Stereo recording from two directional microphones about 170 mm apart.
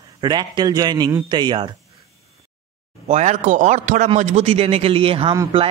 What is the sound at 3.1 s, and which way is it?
A man's voice, 45° right (ahead or behind).